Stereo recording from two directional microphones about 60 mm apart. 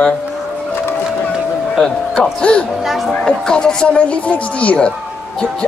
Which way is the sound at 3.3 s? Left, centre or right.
Centre.